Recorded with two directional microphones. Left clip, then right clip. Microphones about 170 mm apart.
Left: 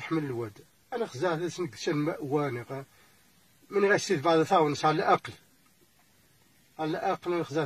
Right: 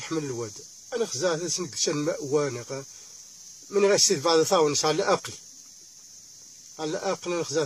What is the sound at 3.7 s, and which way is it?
Speech, 30° right (ahead or behind).